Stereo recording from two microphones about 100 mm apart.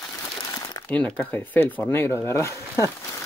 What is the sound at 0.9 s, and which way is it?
Speech, 15° left (ahead or behind).